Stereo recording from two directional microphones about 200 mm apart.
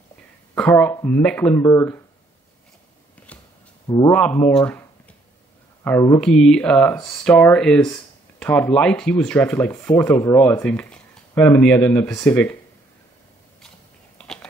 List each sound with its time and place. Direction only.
0.6 s speech: 10° left (ahead or behind)
3.2 s a sound: 5° left (ahead or behind)
3.8 s a man's voice: 20° left (ahead or behind)
4.1 s speech: 10° left (ahead or behind)
5.9 s speech: 15° left (ahead or behind)
6.2 s speech: 5° left (ahead or behind)
14.1 s a sound: 5° left (ahead or behind)